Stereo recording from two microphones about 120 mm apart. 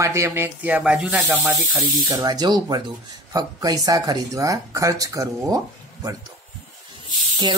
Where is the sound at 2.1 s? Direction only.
35° right (ahead or behind).